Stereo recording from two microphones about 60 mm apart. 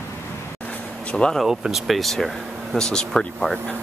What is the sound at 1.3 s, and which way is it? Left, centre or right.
Speech, centre.